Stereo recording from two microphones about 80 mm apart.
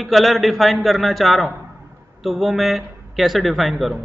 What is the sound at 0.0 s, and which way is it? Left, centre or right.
A man's voice, centre.